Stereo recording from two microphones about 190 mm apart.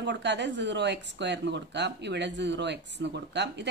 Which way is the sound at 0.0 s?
65° right (ahead or behind).